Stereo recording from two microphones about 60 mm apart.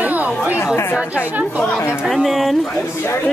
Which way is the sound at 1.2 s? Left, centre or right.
Right.